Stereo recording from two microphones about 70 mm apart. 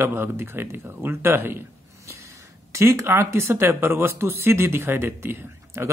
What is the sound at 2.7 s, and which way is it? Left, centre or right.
Speech, right.